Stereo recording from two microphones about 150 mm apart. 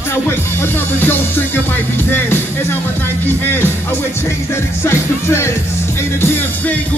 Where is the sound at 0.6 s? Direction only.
15° left (ahead or behind).